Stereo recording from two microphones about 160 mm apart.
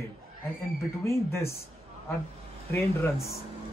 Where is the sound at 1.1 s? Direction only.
15° left (ahead or behind).